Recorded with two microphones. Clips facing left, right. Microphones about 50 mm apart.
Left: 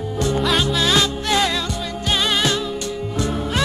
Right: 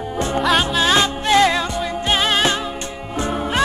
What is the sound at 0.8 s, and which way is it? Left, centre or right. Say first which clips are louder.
Music: right 2 dB; right.